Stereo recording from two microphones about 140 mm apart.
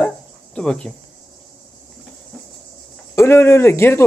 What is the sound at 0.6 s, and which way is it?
Speech, 5° left (ahead or behind).